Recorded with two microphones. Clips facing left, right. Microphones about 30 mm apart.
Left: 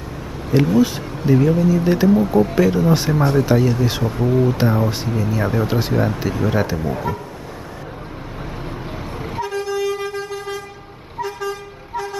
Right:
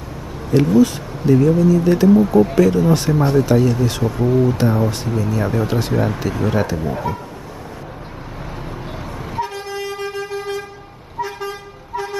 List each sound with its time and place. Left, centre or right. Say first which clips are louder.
0.5 s speech: right 2 dB; centre
9.4 s vehicle: left 3 dB; right